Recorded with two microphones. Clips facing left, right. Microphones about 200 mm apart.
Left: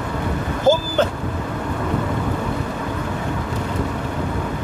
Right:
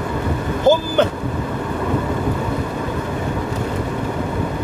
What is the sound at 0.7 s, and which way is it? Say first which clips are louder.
Vehicle: right 2 dB; 20° right (ahead or behind).